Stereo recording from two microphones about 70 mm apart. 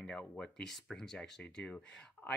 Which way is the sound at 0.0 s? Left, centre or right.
Centre.